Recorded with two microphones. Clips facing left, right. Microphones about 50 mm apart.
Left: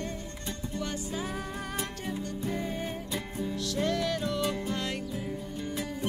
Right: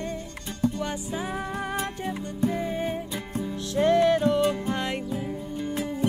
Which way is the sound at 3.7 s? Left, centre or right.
Right.